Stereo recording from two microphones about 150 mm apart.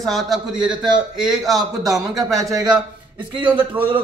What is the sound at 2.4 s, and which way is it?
Speech, 25° right (ahead or behind).